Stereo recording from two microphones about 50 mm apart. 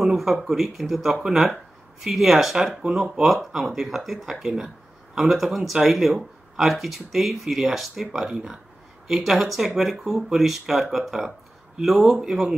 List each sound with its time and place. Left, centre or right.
0.0 s speech: centre